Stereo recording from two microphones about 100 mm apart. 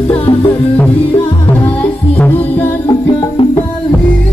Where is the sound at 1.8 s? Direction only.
15° left (ahead or behind).